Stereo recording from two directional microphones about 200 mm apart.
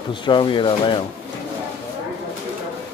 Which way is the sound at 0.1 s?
25° left (ahead or behind).